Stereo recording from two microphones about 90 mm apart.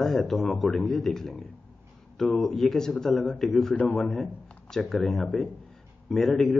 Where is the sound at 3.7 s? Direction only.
25° left (ahead or behind).